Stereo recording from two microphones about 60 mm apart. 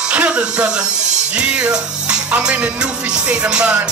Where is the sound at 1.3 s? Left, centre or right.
Centre.